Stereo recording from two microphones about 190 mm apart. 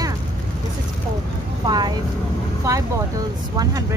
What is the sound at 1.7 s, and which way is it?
Speech, 20° right (ahead or behind).